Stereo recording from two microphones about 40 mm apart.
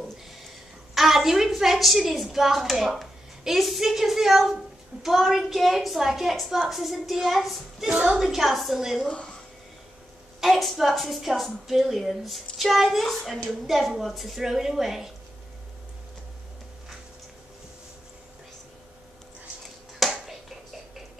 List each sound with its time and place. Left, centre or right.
0.9 s a woman's voice: centre
10.4 s a woman's voice: centre
20.0 s a sound: centre